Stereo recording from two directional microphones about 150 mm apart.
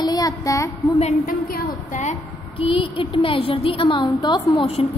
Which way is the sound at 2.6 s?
35° left (ahead or behind).